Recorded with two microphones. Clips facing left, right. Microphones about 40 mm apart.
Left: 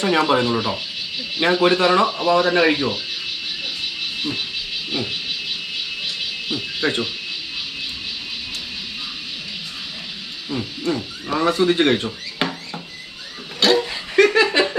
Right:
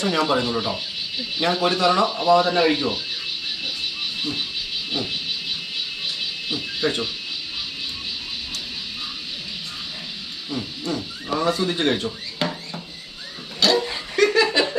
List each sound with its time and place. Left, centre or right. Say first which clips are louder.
0.0 s speech: left 3 dB; left
2.0 s speech: even; left
6.5 s speech: left 2 dB; left
10.5 s speech: left 4 dB; left
13.6 s a sound: left 3 dB; left
14.1 s laughter: left 3 dB; left